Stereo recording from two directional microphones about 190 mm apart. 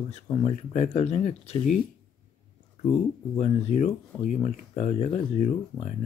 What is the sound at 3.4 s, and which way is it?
Speech, 35° left (ahead or behind).